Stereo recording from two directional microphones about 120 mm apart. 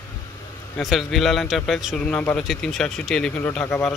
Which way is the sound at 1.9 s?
10° left (ahead or behind).